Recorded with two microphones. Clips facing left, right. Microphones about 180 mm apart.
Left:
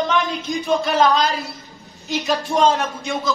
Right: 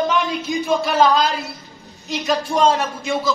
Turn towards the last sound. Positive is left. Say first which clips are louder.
# right 2 dB
turn(degrees=0)  # may be behind; listen again after turning